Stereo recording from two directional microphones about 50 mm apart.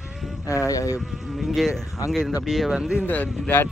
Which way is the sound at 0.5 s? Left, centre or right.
Left.